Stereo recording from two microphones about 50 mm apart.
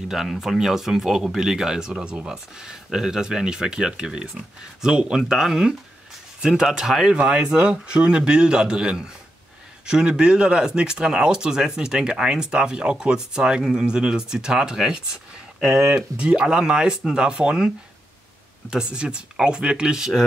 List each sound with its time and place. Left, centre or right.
0.1 s speech: centre
18.7 s speech: centre